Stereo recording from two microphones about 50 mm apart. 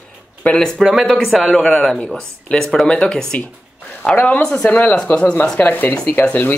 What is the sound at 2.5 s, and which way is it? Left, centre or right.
Speech, left.